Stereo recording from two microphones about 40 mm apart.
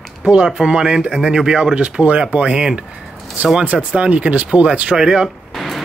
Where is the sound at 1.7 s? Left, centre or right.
Right.